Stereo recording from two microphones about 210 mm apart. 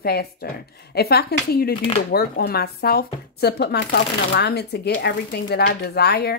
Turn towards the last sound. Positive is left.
turn(degrees=50)  # may be behind; listen again after turning